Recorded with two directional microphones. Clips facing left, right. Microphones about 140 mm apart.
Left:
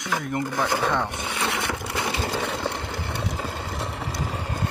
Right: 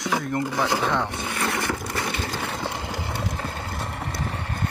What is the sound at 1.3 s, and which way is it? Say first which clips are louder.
Roar: right 1 dB; centre (ahead or behind).